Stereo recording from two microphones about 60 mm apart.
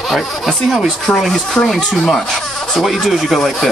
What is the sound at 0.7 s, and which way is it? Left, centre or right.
Speech, centre.